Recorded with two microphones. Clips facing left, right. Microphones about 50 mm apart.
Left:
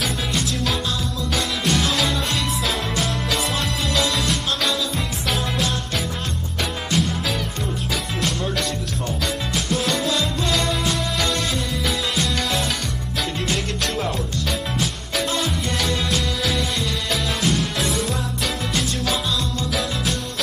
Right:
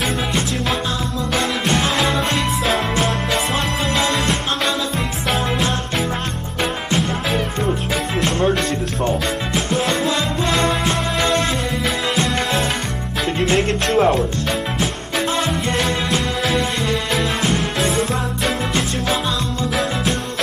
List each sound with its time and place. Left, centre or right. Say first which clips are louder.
0.0 s music: right 4 dB; right
8.2 s music: right 8 dB; right